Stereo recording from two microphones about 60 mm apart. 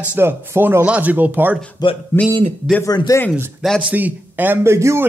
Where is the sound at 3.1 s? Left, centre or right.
Left.